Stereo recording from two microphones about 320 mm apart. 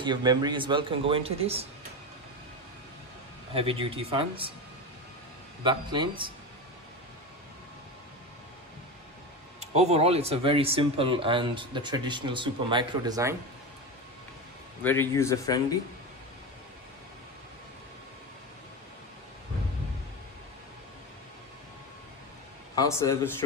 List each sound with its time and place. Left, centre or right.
0.0 s speech: centre
3.5 s speech: centre
5.6 s speech: centre
9.6 s speech: centre
14.8 s speech: centre
22.8 s speech: centre